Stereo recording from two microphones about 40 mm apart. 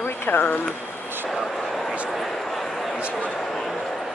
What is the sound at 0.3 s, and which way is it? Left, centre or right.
Speech, left.